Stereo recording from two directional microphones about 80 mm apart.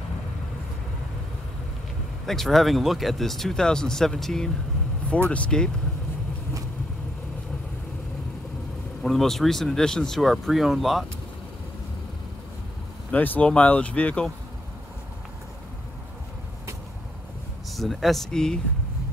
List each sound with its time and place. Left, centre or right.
2.2 s speech: centre
9.0 s speech: centre
13.1 s speech: left
17.6 s speech: centre